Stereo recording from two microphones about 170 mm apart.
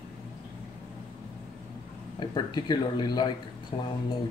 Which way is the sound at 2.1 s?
25° left (ahead or behind).